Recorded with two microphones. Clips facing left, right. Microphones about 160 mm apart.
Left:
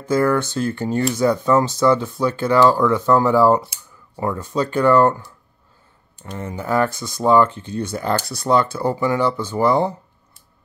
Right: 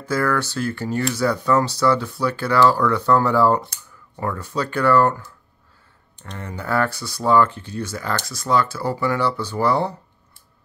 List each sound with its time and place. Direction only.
0.1 s speech: 20° left (ahead or behind)
3.6 s a sound: 5° left (ahead or behind)
4.2 s speech: 15° left (ahead or behind)